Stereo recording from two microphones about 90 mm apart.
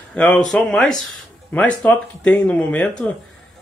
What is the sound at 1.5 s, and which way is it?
Speech, 15° left (ahead or behind).